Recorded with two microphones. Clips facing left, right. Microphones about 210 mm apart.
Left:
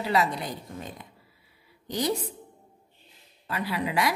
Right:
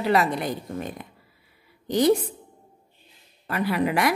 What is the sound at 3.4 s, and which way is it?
Speech, 55° right (ahead or behind).